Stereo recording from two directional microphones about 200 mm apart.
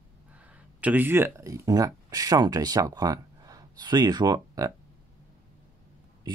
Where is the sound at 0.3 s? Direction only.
5° right (ahead or behind).